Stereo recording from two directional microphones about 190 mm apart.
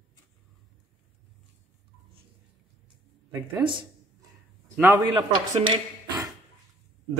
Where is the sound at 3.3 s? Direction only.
20° right (ahead or behind).